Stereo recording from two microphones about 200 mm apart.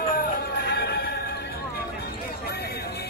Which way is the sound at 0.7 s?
55° left (ahead or behind).